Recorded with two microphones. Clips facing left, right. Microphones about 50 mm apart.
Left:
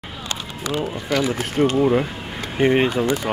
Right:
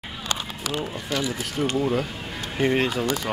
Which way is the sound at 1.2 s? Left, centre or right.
Left.